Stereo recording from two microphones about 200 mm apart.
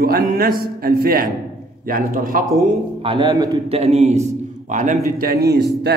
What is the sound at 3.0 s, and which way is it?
A man's voice, 25° right (ahead or behind).